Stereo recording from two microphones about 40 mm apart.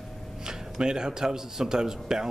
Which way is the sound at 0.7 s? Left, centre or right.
Centre.